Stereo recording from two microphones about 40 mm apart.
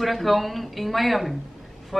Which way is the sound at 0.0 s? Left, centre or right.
Centre.